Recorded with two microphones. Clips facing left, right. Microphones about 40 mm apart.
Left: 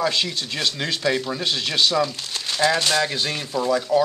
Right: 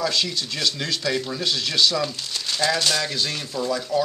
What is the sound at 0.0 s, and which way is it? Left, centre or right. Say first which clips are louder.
Speech: left 1 dB; left.